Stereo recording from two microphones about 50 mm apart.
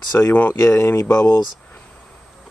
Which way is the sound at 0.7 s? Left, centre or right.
Left.